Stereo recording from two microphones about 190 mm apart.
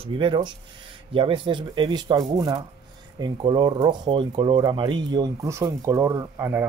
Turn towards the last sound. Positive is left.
turn(degrees=-15)  # may be behind; listen again after turning